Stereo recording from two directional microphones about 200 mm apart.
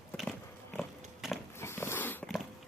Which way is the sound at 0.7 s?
Centre (ahead or behind).